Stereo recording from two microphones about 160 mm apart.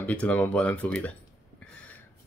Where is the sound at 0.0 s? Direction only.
10° left (ahead or behind).